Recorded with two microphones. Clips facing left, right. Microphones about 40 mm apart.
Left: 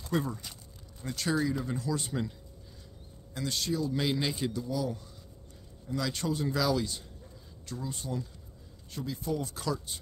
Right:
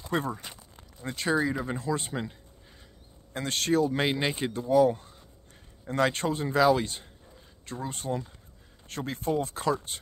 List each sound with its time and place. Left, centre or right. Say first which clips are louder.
0.1 s a sound: right 2 dB; right
1.0 s speech: right 3 dB; right
3.3 s speech: right 6 dB; right
8.8 s speech: right 4 dB; right